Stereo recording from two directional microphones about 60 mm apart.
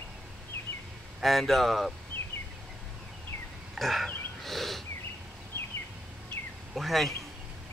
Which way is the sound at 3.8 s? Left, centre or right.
Centre.